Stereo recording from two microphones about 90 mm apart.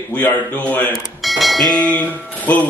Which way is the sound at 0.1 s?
15° left (ahead or behind).